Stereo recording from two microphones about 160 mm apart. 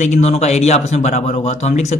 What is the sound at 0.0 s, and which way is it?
Speech, 45° left (ahead or behind).